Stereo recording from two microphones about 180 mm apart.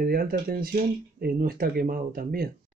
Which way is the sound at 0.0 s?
55° right (ahead or behind).